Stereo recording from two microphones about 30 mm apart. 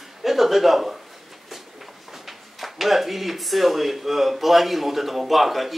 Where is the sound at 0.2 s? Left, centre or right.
Centre.